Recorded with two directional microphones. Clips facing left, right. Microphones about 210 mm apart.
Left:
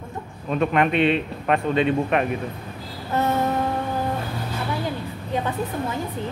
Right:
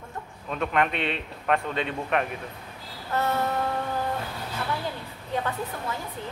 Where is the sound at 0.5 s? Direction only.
15° left (ahead or behind).